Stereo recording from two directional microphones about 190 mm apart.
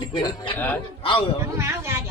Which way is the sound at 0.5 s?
10° left (ahead or behind).